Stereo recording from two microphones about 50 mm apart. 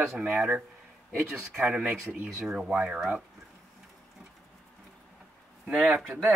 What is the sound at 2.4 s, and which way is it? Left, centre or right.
Speech, centre.